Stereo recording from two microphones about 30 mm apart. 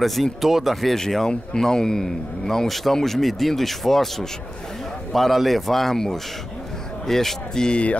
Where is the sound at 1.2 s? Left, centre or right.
Left.